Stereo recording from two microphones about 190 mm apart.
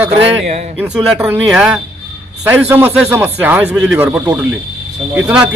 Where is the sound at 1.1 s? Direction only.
5° right (ahead or behind).